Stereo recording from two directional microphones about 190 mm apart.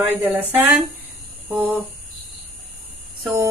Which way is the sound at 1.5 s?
10° right (ahead or behind).